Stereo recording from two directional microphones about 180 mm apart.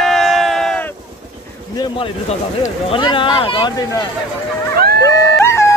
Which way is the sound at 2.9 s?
30° left (ahead or behind).